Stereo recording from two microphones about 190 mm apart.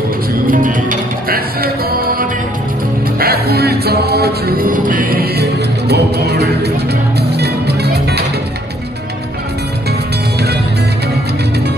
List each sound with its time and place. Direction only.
0.5 s music: 45° right (ahead or behind)
3.2 s music: 55° right (ahead or behind)